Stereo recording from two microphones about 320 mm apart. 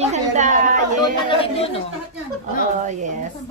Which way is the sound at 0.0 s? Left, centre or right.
Right.